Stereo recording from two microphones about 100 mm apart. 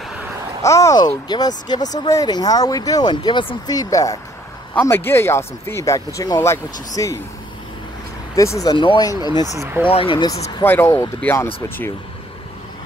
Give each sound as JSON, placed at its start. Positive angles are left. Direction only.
{"t": 0.6, "sound": "speech", "side_deg": 30}
{"t": 3.7, "sound": "speech", "side_deg": 35}
{"t": 4.7, "sound": "speech", "side_deg": 25}
{"t": 6.4, "sound": "speech", "side_deg": 30}
{"t": 8.4, "sound": "speech", "side_deg": 35}
{"t": 8.7, "sound": "speech", "side_deg": 55}
{"t": 9.0, "sound": "speech", "side_deg": 40}
{"t": 9.6, "sound": "speech", "side_deg": -25}
{"t": 9.8, "sound": "speech", "side_deg": 60}
{"t": 10.6, "sound": "speech", "side_deg": 25}